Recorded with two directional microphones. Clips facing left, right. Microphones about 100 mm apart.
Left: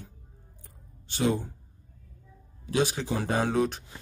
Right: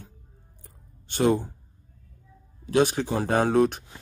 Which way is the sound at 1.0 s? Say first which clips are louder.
Right 5 dB; 55° right (ahead or behind).